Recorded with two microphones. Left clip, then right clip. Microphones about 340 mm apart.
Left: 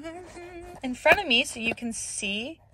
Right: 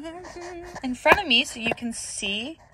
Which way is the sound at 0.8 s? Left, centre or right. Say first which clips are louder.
Right 2 dB; centre.